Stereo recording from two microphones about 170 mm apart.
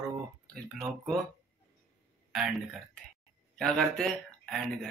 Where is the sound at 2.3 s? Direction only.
Centre (ahead or behind).